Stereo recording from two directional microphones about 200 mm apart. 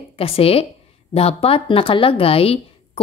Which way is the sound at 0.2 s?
30° left (ahead or behind).